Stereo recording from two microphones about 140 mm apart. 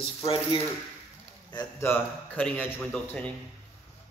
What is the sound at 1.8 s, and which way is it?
A man's voice, 15° left (ahead or behind).